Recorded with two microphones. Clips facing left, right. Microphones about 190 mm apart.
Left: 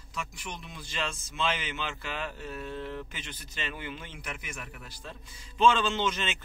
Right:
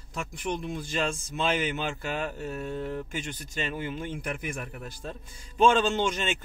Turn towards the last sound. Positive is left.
turn(degrees=-45)  # may be behind; listen again after turning